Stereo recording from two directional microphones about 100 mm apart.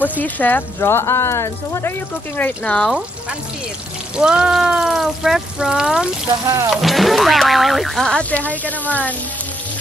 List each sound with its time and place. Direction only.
0.2 s speech: 15° left (ahead or behind)
4.2 s speech: 10° right (ahead or behind)
6.4 s music: 35° right (ahead or behind)
6.7 s speech: centre (ahead or behind); by 9.1 s 15° left (ahead or behind)